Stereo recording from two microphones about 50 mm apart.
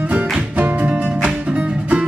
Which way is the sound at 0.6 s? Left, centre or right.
Right.